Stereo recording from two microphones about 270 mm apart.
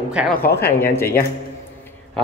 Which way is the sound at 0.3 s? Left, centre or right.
Left.